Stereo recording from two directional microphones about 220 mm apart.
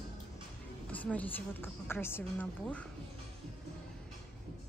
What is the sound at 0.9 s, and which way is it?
A woman's voice, 5° left (ahead or behind).